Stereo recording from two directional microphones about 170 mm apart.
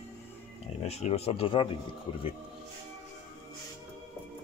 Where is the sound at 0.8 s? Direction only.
40° left (ahead or behind).